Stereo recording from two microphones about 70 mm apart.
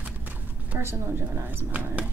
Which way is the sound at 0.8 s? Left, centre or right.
Right.